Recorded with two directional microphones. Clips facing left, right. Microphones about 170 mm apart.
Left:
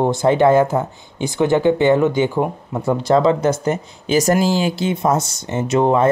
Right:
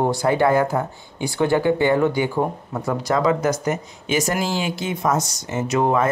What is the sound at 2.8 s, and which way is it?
Speech, 25° left (ahead or behind).